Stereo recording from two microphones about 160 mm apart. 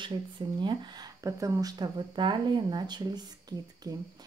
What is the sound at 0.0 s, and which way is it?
Speech, 30° right (ahead or behind).